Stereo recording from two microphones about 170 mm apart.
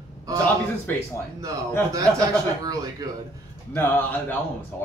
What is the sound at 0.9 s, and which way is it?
Speech, 10° left (ahead or behind).